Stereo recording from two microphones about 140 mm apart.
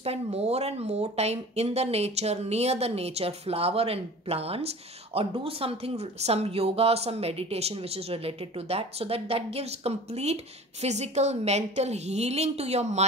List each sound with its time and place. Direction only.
0.0 s speech: 45° right (ahead or behind)